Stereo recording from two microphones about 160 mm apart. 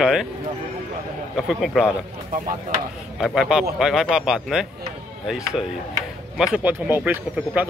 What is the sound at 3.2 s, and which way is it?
A man's voice, centre (ahead or behind).